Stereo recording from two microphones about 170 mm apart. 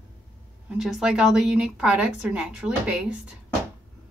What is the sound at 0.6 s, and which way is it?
A woman's voice, centre (ahead or behind).